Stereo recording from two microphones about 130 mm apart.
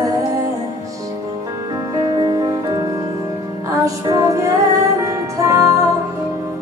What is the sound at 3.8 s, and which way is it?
Music, 25° right (ahead or behind).